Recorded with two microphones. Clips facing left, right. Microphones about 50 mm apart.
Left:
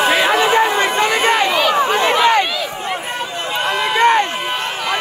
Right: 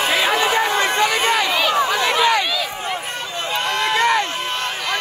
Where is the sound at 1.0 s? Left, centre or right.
Left.